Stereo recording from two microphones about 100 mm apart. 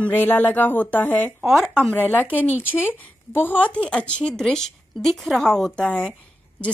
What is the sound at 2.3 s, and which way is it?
Speech, 20° left (ahead or behind).